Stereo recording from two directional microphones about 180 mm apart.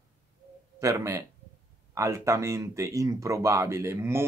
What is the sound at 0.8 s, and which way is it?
Speech, 15° right (ahead or behind).